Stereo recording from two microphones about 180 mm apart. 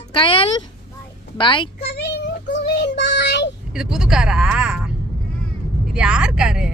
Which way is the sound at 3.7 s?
5° right (ahead or behind).